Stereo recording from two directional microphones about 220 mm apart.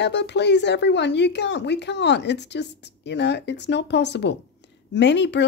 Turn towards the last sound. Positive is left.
turn(degrees=50)  # may be behind; listen again after turning